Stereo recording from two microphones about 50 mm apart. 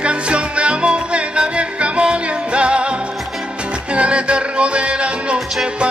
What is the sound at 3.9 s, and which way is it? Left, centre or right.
Music, right.